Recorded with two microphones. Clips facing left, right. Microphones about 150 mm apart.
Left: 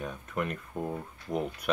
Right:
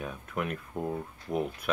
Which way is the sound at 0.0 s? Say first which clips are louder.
Left 1 dB; 5° right (ahead or behind).